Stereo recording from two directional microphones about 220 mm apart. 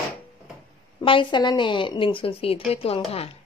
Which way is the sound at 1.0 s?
20° left (ahead or behind).